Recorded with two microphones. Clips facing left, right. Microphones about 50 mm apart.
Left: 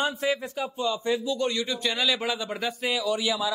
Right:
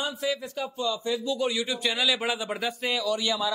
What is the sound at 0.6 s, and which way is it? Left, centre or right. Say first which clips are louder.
Speech: even; left.